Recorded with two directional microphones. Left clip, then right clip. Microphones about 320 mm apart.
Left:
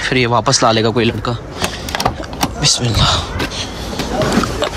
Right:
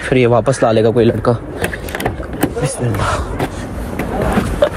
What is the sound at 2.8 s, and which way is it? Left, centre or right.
Speech, centre.